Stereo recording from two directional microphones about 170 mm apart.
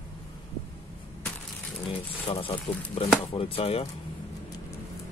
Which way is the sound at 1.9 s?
30° left (ahead or behind).